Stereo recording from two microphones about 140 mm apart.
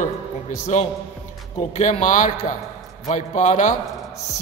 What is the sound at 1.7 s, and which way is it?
A man's voice, 55° left (ahead or behind).